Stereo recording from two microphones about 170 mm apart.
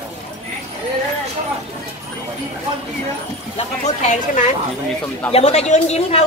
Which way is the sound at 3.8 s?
45° left (ahead or behind).